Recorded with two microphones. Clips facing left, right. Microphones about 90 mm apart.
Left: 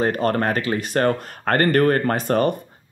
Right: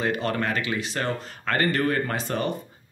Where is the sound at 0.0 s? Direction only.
45° left (ahead or behind).